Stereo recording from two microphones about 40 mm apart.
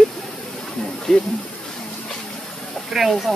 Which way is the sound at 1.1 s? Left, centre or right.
Centre.